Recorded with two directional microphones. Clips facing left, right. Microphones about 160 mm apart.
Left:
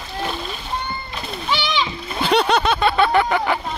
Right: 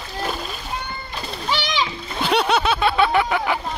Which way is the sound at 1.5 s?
40° right (ahead or behind).